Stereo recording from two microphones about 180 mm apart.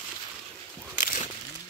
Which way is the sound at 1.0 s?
45° left (ahead or behind).